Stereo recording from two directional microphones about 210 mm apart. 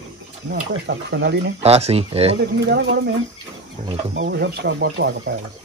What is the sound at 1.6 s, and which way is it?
Speech, 30° right (ahead or behind).